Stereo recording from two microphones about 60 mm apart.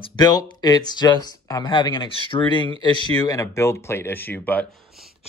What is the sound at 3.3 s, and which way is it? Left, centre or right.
A man's voice, left.